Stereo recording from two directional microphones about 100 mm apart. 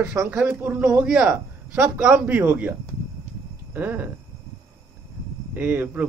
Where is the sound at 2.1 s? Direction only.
20° right (ahead or behind).